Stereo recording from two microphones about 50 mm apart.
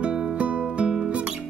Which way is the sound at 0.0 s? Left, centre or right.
Centre.